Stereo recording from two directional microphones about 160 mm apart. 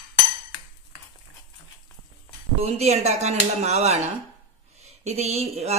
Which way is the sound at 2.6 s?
40° right (ahead or behind).